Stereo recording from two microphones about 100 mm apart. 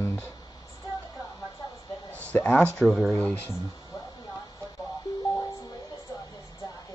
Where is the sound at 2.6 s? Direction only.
20° left (ahead or behind).